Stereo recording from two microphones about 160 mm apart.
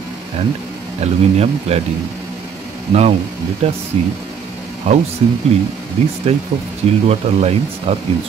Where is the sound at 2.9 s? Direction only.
40° right (ahead or behind).